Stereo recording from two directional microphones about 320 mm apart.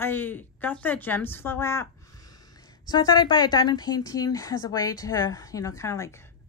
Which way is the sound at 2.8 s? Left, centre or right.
Centre.